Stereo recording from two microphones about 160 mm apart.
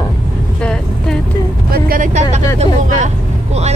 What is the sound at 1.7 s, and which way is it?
Speech, 65° right (ahead or behind).